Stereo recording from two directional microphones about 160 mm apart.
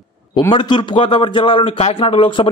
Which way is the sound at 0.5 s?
30° left (ahead or behind).